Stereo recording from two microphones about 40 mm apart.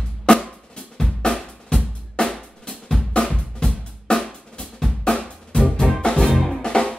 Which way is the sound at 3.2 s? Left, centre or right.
Left.